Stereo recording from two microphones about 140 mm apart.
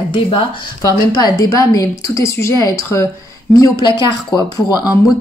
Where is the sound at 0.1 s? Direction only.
35° left (ahead or behind).